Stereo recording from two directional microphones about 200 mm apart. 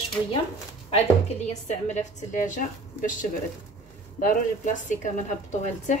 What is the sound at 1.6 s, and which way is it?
A woman's voice, 35° left (ahead or behind).